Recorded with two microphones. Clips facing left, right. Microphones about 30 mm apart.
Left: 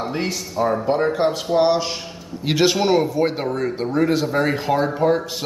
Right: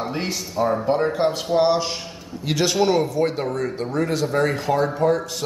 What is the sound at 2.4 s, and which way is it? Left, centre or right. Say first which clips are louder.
Speech: left 2 dB; centre.